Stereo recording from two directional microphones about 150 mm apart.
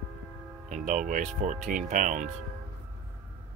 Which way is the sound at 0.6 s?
60° right (ahead or behind).